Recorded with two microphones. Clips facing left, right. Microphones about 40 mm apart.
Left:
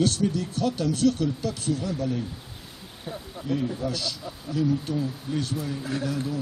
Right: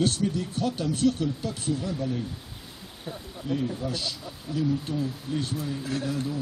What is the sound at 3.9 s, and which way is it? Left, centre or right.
A man's voice, right.